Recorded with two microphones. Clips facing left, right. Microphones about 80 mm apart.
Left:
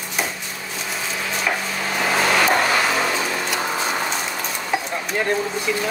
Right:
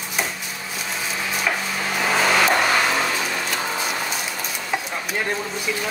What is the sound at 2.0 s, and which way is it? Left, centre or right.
Vehicle, centre.